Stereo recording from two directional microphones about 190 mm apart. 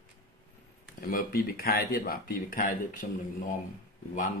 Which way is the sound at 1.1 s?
50° left (ahead or behind).